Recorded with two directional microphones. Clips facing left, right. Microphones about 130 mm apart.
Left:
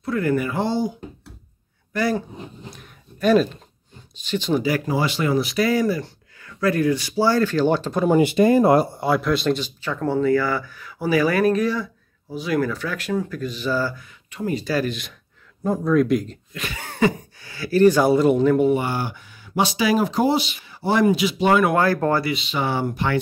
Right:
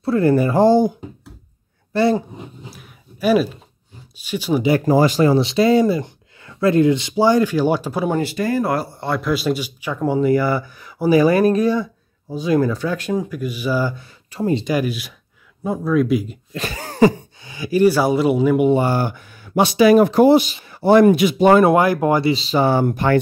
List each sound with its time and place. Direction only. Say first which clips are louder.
0.0 s speech: right 6 dB; 30° right (ahead or behind)
1.9 s speech: right 6 dB; 30° right (ahead or behind)
2.3 s a sound: right 1 dB; 5° right (ahead or behind)
4.2 s speech: right 2 dB; 10° right (ahead or behind)
4.8 s speech: right 8 dB; 45° right (ahead or behind); by 8.1 s 10° right (ahead or behind)
8.2 s speech: left 5 dB; 20° left (ahead or behind)
9.0 s speech: even; centre (ahead or behind); by 11.1 s 15° right (ahead or behind)
11.1 s speech: right 5 dB; 25° right (ahead or behind)
13.9 s speech: right 6 dB; 30° right (ahead or behind); by 16.3 s 5° right (ahead or behind)
16.5 s a sound: right 7 dB; 35° right (ahead or behind)
17.4 s speech: even; 20° right (ahead or behind)
18.7 s speech: right 4 dB; 40° right (ahead or behind)
21.6 s speech: right 4 dB; 20° right (ahead or behind)
22.3 s speech: right 7 dB; 35° right (ahead or behind)